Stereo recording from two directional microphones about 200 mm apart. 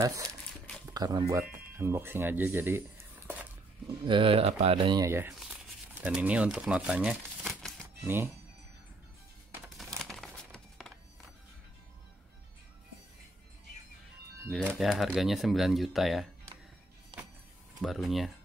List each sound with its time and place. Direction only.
0.0 s speech: 15° right (ahead or behind)
4.0 s speech: 25° right (ahead or behind); by 7.8 s centre (ahead or behind)
7.8 s music: 10° right (ahead or behind)
9.5 s music: centre (ahead or behind)
14.5 s speech: centre (ahead or behind)
17.1 s vehicle: 25° right (ahead or behind)
17.8 s speech: centre (ahead or behind)